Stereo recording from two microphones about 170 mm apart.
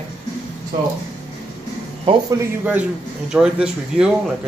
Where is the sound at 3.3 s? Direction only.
5° right (ahead or behind).